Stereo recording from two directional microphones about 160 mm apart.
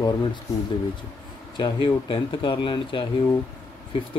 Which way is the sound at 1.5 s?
30° left (ahead or behind).